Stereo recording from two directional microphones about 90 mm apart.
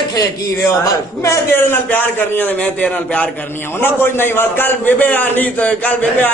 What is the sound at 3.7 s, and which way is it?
A man's voice, 25° left (ahead or behind).